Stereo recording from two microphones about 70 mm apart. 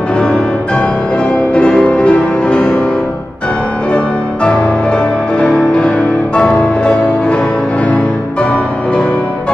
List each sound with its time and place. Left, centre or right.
0.2 s music: centre
3.9 s music: centre